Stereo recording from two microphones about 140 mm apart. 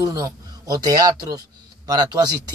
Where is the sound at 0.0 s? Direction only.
25° right (ahead or behind).